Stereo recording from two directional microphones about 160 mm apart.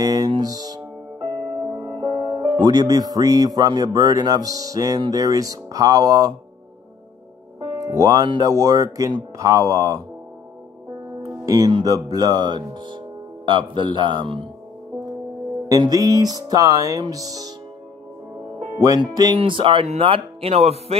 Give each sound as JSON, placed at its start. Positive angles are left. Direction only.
{"t": 0.0, "sound": "music", "side_deg": -25}
{"t": 1.8, "sound": "speech", "side_deg": -25}
{"t": 7.8, "sound": "speech", "side_deg": -20}
{"t": 11.2, "sound": "speech", "side_deg": -20}
{"t": 15.7, "sound": "speech", "side_deg": -25}
{"t": 18.8, "sound": "speech", "side_deg": -25}